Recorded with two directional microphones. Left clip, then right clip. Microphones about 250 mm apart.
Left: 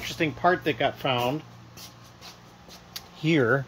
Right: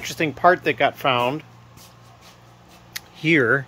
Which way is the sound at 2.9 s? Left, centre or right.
Centre.